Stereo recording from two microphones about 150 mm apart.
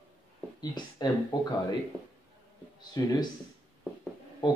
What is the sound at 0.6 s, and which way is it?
Speech, 25° left (ahead or behind).